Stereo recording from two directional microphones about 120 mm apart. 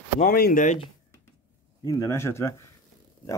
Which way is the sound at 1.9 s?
30° left (ahead or behind).